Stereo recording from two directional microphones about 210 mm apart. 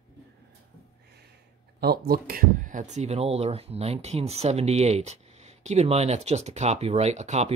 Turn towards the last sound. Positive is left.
turn(degrees=-30)  # may be behind; listen again after turning